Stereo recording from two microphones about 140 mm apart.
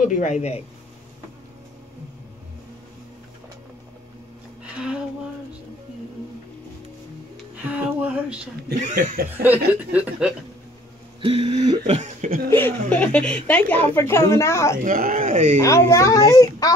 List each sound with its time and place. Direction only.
0.1 s speech: 60° left (ahead or behind)
4.7 s speech: 5° right (ahead or behind)
7.5 s speech: 10° right (ahead or behind)
8.7 s speech: 65° right (ahead or behind)
9.4 s speech: 10° right (ahead or behind)
11.1 s a sound: 40° right (ahead or behind)
11.9 s speech: 60° right (ahead or behind)
12.9 s a woman's voice: 10° left (ahead or behind)
14.8 s speech: 80° right; by 15.6 s 60° right (ahead or behind)
15.6 s speech: 20° left (ahead or behind)